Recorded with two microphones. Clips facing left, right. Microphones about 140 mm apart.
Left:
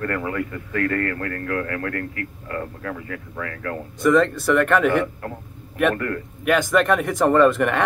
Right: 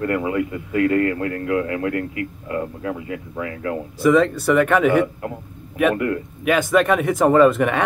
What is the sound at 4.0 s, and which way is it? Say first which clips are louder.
Speech: right 1 dB; centre (ahead or behind).